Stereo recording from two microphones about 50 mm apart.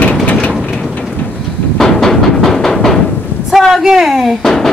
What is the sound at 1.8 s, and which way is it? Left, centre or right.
Music, centre.